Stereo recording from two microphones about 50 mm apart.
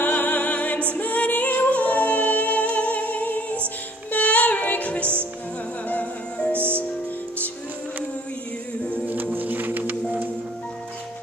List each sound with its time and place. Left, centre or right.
0.0 s music: left
9.0 s music: right